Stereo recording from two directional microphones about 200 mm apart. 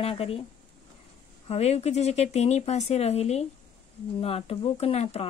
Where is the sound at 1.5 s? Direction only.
30° left (ahead or behind).